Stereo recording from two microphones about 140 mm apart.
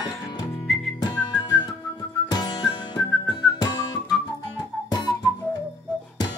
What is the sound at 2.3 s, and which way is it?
Music, 30° left (ahead or behind).